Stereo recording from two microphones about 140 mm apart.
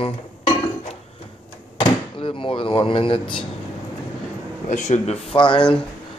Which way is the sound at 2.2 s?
40° left (ahead or behind).